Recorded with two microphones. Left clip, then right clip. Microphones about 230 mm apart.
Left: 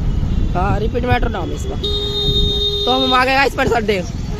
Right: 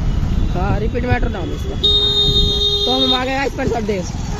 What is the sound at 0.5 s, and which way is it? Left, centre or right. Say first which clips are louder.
Speech: left 3 dB; left.